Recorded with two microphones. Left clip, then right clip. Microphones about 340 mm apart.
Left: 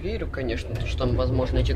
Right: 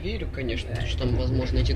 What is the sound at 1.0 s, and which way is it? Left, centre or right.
Speech, centre.